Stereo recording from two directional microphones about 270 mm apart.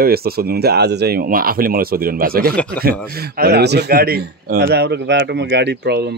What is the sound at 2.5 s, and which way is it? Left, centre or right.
Speech, centre.